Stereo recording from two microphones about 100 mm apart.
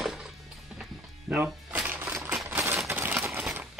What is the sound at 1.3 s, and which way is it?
Music, 15° right (ahead or behind).